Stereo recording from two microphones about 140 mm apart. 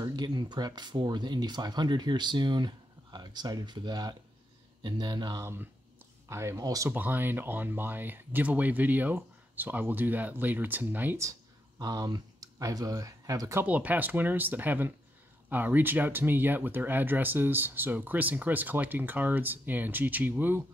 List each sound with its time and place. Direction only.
0.0 s speech: 30° right (ahead or behind)
5.4 s speech: 15° right (ahead or behind)
6.9 s speech: 15° right (ahead or behind)
11.8 s speech: 30° right (ahead or behind)
13.7 s speech: 10° right (ahead or behind)